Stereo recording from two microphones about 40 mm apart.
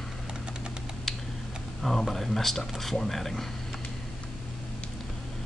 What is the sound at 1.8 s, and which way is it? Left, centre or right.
Speech, centre.